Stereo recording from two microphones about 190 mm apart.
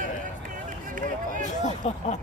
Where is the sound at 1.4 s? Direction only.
40° left (ahead or behind).